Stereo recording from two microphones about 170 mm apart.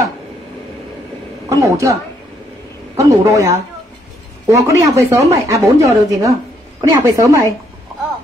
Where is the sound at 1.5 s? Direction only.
20° right (ahead or behind).